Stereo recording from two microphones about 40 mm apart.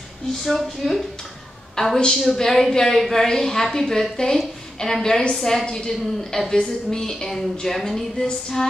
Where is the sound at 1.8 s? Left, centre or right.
Centre.